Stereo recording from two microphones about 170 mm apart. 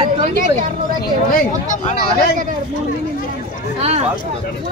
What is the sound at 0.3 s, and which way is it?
Speech, 50° right (ahead or behind).